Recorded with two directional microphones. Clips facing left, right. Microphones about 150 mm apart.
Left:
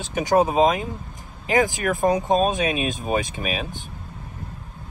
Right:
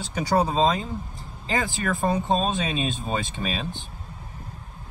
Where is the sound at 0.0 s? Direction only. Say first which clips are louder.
Left 4 dB; 20° left (ahead or behind).